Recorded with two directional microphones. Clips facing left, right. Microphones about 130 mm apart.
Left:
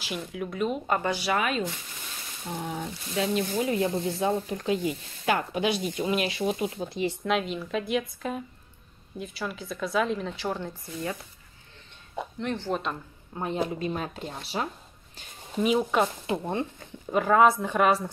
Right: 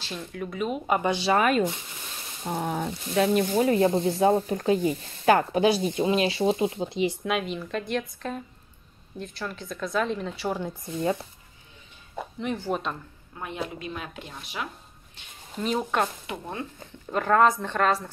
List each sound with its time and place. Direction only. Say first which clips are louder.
0.0 s a woman's voice: left 1 dB; 10° left (ahead or behind); by 1.1 s 10° right (ahead or behind)
1.1 s a woman's voice: right 4 dB; 25° right (ahead or behind)
1.4 s speech: right 6 dB; 50° right (ahead or behind); by 7.2 s 20° right (ahead or behind)
7.2 s a woman's voice: left 1 dB; centre (ahead or behind)
12.4 s a woman's voice: right 1 dB; 5° right (ahead or behind)
13.3 s speech: left 5 dB; 30° left (ahead or behind)
15.8 s a woman's voice: left 2 dB; 5° left (ahead or behind)
16.3 s speech: left 6 dB; 25° left (ahead or behind)
17.1 s speech: left 1 dB; 5° left (ahead or behind)